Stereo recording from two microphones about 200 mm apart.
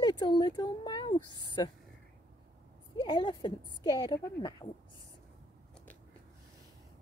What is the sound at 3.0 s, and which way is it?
Speech, 25° left (ahead or behind).